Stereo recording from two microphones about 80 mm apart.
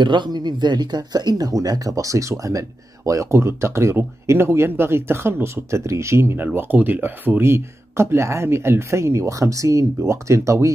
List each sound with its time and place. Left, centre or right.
0.0 s speech: right